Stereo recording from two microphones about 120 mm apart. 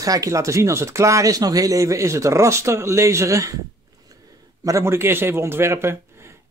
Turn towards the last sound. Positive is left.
turn(degrees=-20)  # may be behind; listen again after turning